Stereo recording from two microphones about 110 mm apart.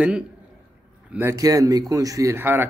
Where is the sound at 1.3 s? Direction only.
30° right (ahead or behind).